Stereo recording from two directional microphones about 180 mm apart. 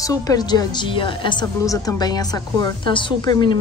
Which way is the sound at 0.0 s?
20° left (ahead or behind).